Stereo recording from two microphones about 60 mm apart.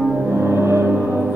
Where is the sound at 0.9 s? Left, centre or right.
Right.